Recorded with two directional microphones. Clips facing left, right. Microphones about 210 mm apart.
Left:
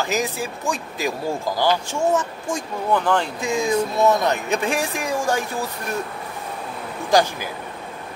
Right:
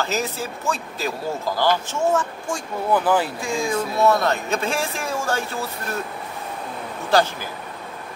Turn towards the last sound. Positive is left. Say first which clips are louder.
# left 1 dB
turn(degrees=15)  # may be behind; listen again after turning